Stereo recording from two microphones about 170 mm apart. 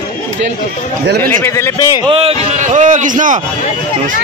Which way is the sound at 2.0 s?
35° right (ahead or behind).